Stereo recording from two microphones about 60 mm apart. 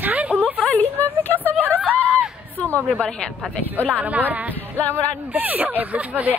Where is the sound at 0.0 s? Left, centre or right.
Right.